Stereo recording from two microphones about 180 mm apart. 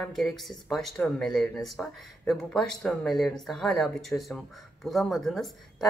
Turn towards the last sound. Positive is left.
turn(degrees=0)  # may be behind; listen again after turning